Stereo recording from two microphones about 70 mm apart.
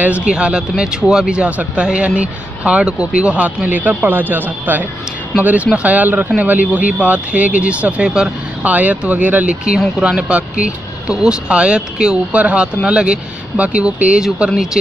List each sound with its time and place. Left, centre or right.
0.0 s speech: centre